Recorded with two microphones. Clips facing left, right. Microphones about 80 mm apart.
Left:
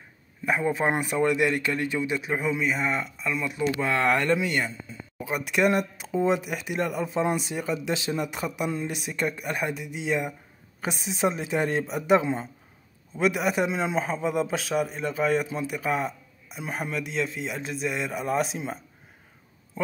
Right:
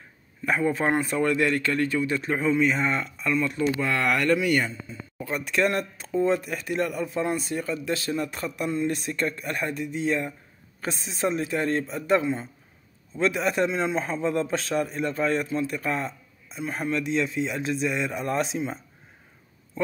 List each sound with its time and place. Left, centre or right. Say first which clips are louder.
0.5 s speech: right 1 dB; centre
3.8 s speech: left 3 dB; left; by 18.8 s centre